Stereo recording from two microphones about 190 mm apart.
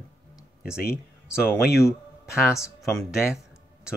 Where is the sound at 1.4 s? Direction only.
15° left (ahead or behind).